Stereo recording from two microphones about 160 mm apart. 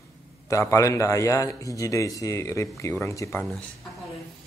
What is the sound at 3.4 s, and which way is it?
Speech, centre (ahead or behind).